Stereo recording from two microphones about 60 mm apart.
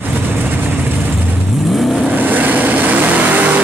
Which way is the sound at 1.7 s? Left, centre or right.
Centre.